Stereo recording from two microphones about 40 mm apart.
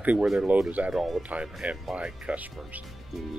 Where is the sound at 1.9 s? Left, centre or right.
Right.